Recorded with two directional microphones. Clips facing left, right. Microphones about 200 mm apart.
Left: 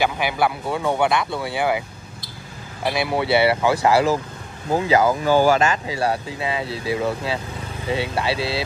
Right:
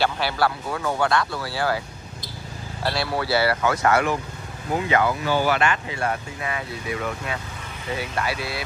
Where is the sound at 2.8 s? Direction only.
20° left (ahead or behind).